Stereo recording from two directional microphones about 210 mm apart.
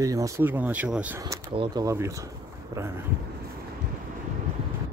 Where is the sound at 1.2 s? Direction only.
20° right (ahead or behind).